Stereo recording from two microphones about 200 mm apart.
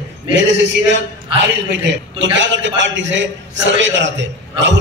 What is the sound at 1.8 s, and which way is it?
A man's voice, 65° right (ahead or behind).